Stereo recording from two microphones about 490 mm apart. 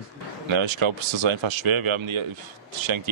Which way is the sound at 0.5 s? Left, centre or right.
Right.